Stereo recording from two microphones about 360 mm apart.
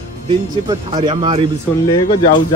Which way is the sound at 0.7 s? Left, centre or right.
Centre.